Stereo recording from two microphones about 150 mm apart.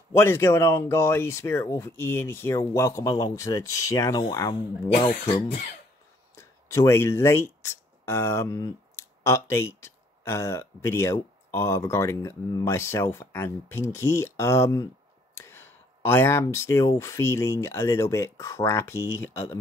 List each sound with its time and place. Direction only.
0.1 s speech: 15° left (ahead or behind)
6.3 s speech: 20° left (ahead or behind)